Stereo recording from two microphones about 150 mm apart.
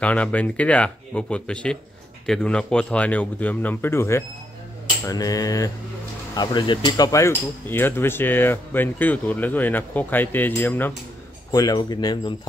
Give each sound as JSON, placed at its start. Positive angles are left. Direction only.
{"t": 0.0, "sound": "cutlery", "side_deg": 10}
{"t": 5.0, "sound": "speech", "side_deg": 25}
{"t": 6.3, "sound": "cutlery", "side_deg": 30}
{"t": 11.5, "sound": "speech", "side_deg": 25}